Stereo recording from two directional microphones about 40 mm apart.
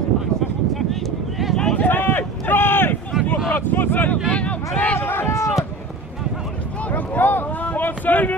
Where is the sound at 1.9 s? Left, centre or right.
Left.